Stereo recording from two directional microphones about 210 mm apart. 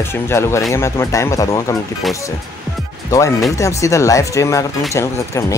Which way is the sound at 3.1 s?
15° left (ahead or behind).